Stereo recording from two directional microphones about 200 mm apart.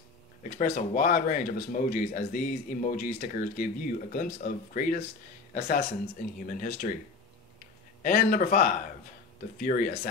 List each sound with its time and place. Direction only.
0.4 s speech: 40° left (ahead or behind)
8.0 s speech: 45° left (ahead or behind)